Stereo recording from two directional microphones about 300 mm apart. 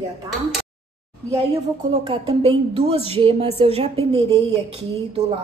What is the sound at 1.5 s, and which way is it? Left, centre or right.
A woman's voice, centre.